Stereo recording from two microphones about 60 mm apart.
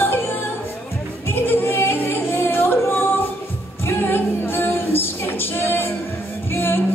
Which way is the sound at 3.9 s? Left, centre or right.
Left.